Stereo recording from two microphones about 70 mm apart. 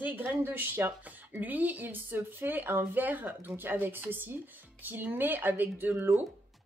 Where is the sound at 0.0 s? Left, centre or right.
Right.